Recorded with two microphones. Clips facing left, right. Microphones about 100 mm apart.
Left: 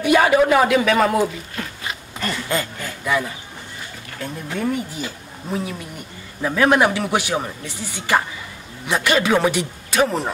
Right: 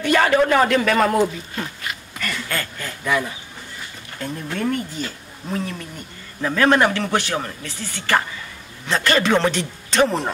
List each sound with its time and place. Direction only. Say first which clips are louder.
0.0 s a man's voice: left 2 dB; 10° left (ahead or behind)
1.8 s a sound: left 2 dB; 25° left (ahead or behind)
2.8 s a man's voice: even; centre (ahead or behind)